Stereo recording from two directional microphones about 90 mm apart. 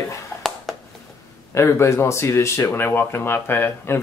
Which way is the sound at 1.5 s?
30° left (ahead or behind).